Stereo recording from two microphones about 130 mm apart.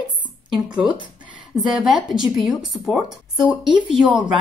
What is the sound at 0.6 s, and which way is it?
A woman's voice, 5° right (ahead or behind).